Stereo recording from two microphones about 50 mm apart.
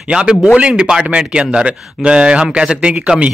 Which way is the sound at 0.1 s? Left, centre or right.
Centre.